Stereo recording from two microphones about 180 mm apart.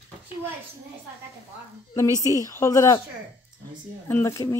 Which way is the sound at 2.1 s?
20° right (ahead or behind).